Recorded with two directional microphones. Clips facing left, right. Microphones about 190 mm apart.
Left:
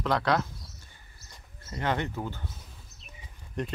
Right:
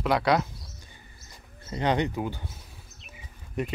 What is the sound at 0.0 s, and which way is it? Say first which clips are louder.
Speech: right 3 dB; 10° right (ahead or behind).